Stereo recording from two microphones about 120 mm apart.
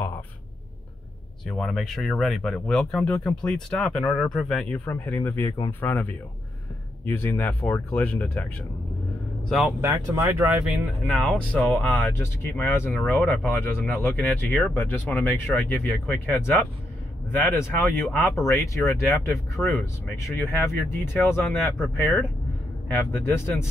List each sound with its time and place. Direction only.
1.4 s speech: centre (ahead or behind)
10.0 s speech: 20° right (ahead or behind)
10.6 s speech: centre (ahead or behind); by 23.7 s 20° left (ahead or behind)